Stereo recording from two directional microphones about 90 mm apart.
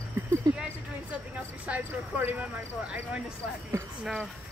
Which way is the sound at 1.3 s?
15° right (ahead or behind).